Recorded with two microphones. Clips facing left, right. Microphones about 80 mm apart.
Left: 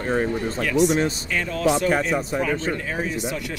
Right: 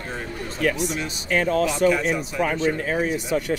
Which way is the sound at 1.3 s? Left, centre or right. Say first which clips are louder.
Right 6 dB; right.